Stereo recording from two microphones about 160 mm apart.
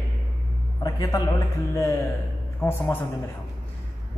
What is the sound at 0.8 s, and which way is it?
A man's voice, 25° left (ahead or behind).